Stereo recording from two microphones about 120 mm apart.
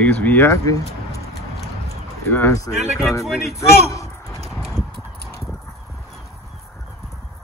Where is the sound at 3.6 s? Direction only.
25° left (ahead or behind).